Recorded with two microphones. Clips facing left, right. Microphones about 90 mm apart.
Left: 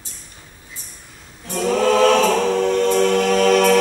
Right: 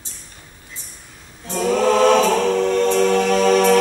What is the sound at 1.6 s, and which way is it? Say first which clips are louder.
Choir: even; 5° right (ahead or behind).